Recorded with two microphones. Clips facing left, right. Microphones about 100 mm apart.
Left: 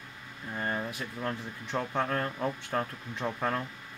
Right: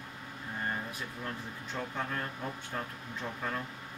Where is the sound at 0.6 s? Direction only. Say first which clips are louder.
Left 4 dB; 60° left (ahead or behind).